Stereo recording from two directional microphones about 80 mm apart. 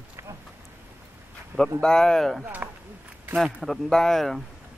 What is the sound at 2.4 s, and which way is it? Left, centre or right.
Speech, centre.